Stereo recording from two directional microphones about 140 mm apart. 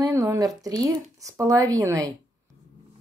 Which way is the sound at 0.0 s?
20° right (ahead or behind).